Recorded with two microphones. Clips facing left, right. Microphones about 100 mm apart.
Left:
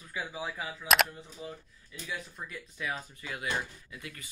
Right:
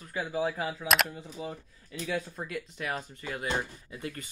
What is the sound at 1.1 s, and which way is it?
Speech, 90° right.